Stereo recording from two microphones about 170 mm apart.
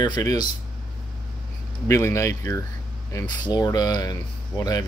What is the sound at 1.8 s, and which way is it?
Speech, 15° left (ahead or behind).